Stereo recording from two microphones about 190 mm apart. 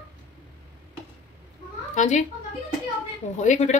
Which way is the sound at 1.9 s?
40° left (ahead or behind).